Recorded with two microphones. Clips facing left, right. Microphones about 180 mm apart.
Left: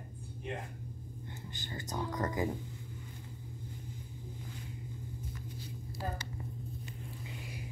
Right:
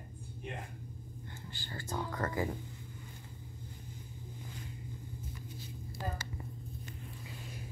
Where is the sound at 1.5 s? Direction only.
20° left (ahead or behind).